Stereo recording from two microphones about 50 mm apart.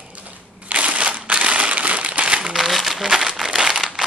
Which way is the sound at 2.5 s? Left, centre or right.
Centre.